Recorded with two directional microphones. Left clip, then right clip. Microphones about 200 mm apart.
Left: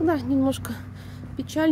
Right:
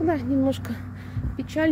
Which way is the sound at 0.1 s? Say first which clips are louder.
Even; 25° left (ahead or behind).